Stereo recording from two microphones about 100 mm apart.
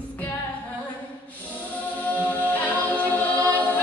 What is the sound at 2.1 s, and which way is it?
A capella, 15° left (ahead or behind).